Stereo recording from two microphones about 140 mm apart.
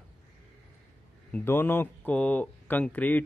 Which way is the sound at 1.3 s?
15° left (ahead or behind).